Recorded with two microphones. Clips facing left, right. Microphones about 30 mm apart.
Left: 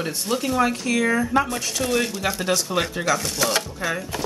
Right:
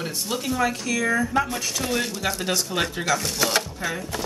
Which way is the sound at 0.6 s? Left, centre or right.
Left.